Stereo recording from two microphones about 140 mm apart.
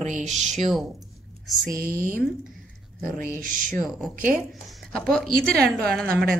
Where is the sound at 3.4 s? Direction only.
75° right (ahead or behind).